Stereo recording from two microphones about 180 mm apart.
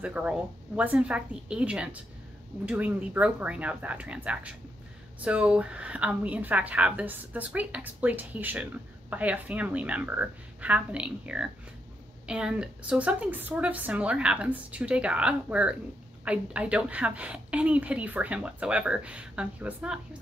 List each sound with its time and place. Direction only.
0.0 s a woman's voice: 5° right (ahead or behind)